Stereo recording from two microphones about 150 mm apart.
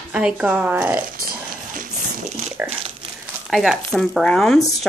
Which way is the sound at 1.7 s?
60° right (ahead or behind).